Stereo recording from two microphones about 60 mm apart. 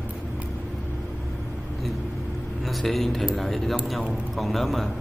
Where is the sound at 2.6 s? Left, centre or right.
Centre.